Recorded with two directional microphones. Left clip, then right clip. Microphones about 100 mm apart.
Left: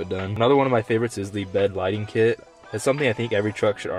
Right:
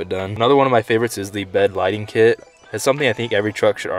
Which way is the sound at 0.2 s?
10° right (ahead or behind).